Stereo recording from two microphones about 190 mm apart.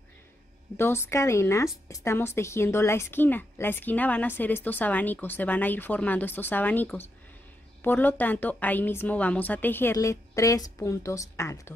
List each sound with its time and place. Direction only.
0.7 s a woman's voice: 10° left (ahead or behind)